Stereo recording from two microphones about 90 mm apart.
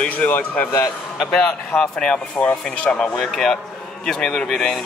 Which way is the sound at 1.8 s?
10° left (ahead or behind).